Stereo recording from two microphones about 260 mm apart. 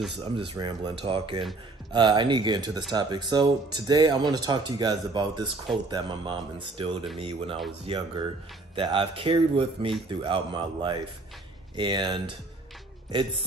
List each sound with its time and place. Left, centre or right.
0.6 s speech: centre